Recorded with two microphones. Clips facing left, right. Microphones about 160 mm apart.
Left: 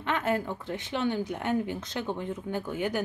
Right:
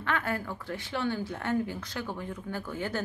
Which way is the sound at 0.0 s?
20° left (ahead or behind).